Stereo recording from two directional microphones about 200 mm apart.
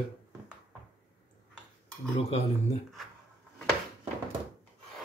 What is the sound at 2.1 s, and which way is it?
Cutlery, 30° left (ahead or behind).